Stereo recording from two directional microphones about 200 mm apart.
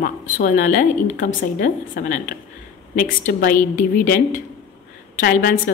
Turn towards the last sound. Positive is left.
turn(degrees=45)  # may be behind; listen again after turning